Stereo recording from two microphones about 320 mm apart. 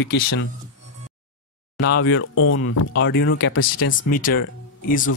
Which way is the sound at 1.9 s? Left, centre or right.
Left.